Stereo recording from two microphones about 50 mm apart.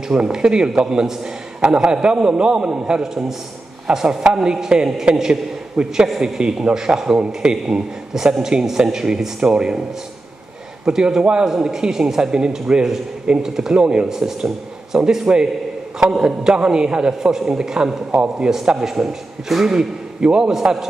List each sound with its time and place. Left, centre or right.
0.1 s a man's voice: centre
10.9 s a man's voice: centre
20.2 s a man's voice: centre
20.5 s a man's voice: centre